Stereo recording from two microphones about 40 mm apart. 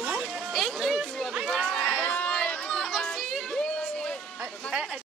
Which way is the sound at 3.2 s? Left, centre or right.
Centre.